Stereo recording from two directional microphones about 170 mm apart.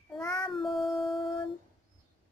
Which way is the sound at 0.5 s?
Centre (ahead or behind).